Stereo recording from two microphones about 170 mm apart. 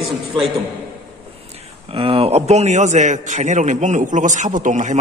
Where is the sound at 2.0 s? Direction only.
35° right (ahead or behind).